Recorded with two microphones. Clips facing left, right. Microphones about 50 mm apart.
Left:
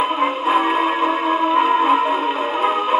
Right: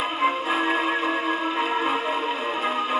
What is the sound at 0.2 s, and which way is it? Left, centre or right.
Music, left.